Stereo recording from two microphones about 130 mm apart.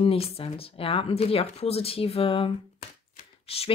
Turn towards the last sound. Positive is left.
turn(degrees=50)  # may be behind; listen again after turning